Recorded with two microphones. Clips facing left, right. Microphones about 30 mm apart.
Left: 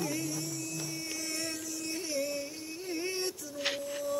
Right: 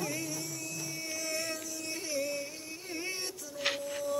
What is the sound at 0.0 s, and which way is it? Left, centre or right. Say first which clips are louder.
Music: left 2 dB; centre.